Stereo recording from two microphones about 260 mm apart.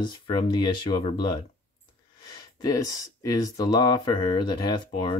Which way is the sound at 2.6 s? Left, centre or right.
Centre.